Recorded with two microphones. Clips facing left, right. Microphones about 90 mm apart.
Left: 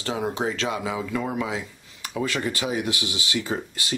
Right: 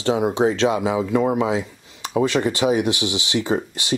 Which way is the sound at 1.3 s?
25° right (ahead or behind).